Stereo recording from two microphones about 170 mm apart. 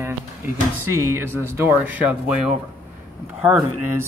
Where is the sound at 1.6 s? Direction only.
10° right (ahead or behind).